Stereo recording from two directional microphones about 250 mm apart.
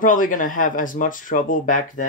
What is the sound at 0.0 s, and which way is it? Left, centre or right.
Speech, left.